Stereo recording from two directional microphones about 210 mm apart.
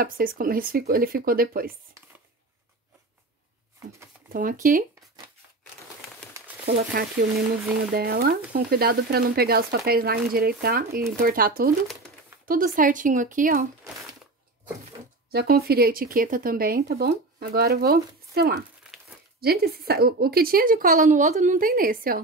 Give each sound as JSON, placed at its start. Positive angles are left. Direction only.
{"t": 0.0, "sound": "speech", "side_deg": -40}
{"t": 4.3, "sound": "speech", "side_deg": -40}
{"t": 6.6, "sound": "speech", "side_deg": -45}
{"t": 15.3, "sound": "speech", "side_deg": -45}